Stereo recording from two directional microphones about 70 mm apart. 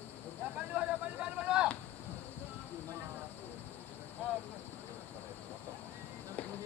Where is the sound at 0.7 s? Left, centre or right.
Right.